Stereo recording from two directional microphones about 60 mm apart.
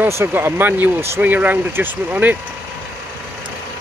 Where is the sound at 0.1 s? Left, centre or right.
Right.